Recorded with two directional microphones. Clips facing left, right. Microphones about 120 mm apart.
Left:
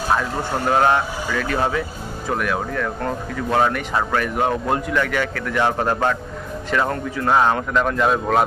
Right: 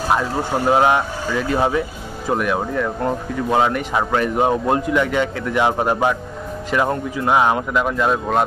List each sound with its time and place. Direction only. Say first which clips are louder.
0.1 s speech: right 2 dB; 15° right (ahead or behind); by 8.5 s centre (ahead or behind)